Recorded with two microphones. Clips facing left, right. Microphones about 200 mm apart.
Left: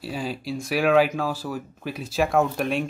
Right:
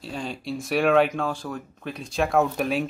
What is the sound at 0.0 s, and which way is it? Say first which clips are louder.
Speech: left 2 dB; 5° left (ahead or behind).